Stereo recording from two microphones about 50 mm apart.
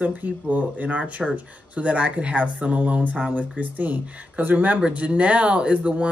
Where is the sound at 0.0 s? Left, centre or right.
Right.